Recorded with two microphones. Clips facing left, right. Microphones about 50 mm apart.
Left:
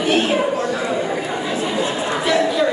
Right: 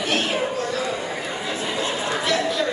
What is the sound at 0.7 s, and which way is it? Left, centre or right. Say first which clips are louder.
Chatter: left 5 dB; centre.